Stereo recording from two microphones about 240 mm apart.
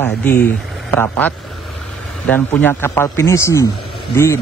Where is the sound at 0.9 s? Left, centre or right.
Centre.